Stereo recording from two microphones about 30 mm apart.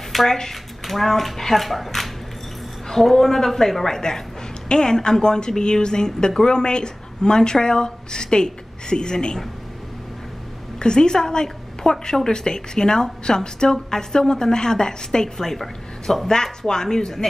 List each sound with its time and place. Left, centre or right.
0.3 s a woman's voice: centre
4.6 s a woman's voice: left
10.8 s a woman's voice: left; by 16.2 s centre
16.6 s a woman's voice: left